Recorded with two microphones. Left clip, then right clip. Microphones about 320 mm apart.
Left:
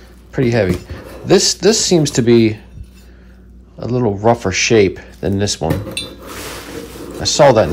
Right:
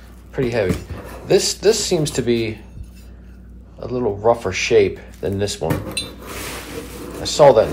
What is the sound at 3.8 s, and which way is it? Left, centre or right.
Speech, left.